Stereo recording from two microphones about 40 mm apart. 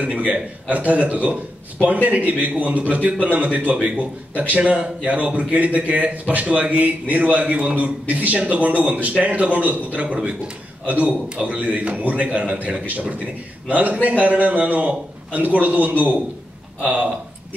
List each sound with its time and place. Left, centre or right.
0.2 s a man's voice: right